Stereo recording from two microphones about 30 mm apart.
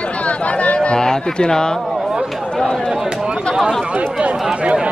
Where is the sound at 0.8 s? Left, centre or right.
Left.